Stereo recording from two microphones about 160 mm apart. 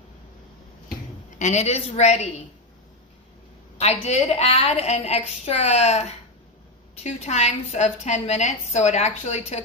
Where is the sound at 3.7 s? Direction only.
40° left (ahead or behind).